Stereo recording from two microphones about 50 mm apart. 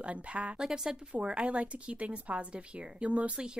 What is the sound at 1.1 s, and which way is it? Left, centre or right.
Speech, right.